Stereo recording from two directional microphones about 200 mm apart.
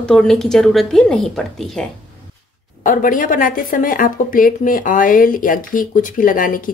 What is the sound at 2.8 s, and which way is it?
Speech, 45° left (ahead or behind).